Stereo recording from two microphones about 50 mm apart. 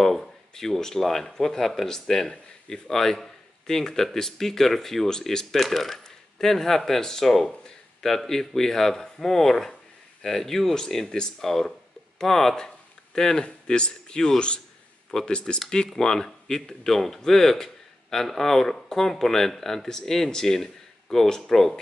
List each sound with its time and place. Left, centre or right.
0.0 s speech: centre